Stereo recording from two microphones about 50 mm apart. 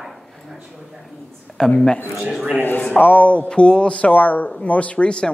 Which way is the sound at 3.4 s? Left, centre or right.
Centre.